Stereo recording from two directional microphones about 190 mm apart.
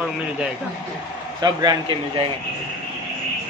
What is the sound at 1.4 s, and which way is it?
Speech, 20° right (ahead or behind).